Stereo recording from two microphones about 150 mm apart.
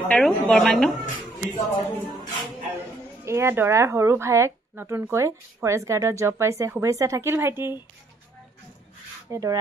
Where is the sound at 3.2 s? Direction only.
20° right (ahead or behind).